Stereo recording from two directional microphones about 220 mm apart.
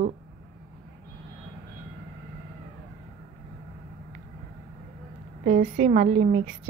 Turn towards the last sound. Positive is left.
turn(degrees=-35)  # may be behind; listen again after turning